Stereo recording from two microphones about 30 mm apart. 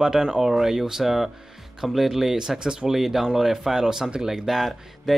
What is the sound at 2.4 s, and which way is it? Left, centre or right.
Speech, right.